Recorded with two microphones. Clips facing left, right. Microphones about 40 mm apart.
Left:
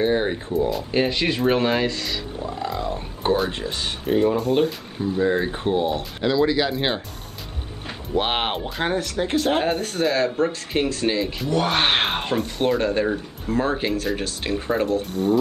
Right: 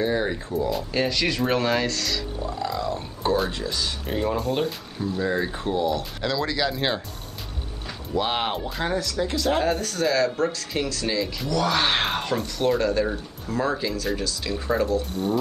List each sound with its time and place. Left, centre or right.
0.0 s speech: left
0.6 s speech: centre
0.9 s speech: left
4.0 s speech: centre
4.9 s speech: left
6.2 s speech: centre
8.1 s speech: left
15.0 s speech: centre